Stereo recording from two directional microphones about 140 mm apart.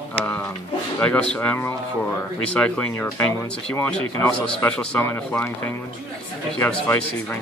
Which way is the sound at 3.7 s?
15° left (ahead or behind).